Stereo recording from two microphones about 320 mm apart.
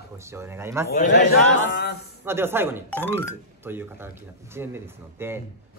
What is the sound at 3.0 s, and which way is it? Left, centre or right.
Speech, centre.